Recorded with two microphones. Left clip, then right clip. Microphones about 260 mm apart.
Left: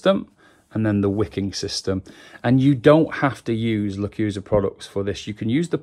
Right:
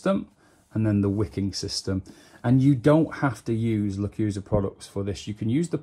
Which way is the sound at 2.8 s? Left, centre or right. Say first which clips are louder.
Left 8 dB; left.